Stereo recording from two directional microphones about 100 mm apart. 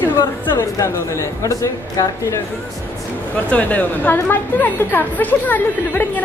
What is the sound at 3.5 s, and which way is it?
A woman's voice, 15° left (ahead or behind).